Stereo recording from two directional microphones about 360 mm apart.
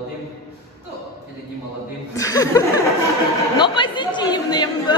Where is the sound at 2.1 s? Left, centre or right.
Centre.